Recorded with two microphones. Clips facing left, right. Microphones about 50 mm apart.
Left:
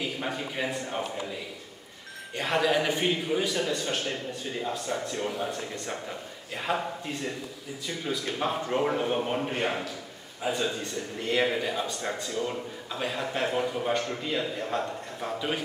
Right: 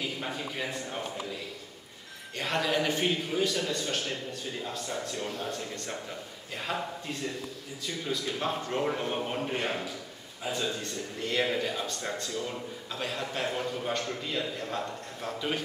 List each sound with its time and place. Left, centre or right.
0.2 s a man's voice: centre
2.3 s a man's voice: centre
7.8 s a man's voice: centre